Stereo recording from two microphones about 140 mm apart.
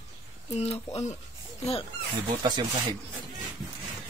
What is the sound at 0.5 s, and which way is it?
Speech, 50° left (ahead or behind).